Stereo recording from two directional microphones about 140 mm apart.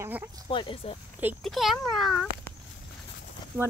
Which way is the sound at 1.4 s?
Centre (ahead or behind).